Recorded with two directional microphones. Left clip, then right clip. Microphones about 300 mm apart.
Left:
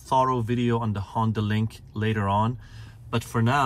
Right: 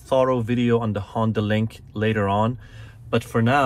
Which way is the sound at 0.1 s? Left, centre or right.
Centre.